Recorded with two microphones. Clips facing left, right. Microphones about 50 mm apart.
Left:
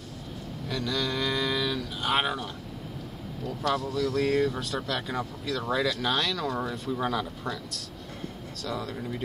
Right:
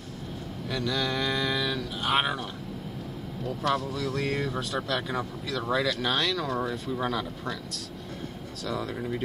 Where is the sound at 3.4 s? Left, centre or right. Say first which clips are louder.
Right 1 dB; right.